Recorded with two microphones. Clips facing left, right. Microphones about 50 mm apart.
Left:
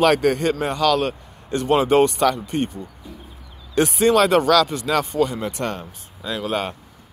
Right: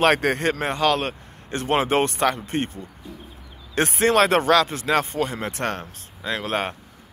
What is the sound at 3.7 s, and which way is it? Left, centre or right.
Speech, right.